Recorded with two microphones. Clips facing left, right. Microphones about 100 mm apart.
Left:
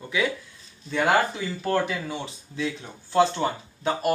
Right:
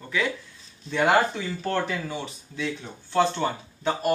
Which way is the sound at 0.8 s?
Centre (ahead or behind).